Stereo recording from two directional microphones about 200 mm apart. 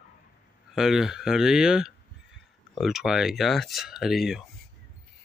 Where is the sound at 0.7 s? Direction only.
Centre (ahead or behind).